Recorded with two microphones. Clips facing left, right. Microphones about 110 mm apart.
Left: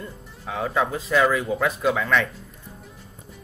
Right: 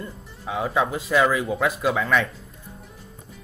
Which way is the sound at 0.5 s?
5° right (ahead or behind).